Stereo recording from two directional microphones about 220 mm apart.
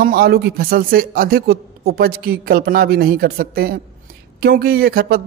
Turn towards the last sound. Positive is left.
turn(degrees=-45)  # may be behind; listen again after turning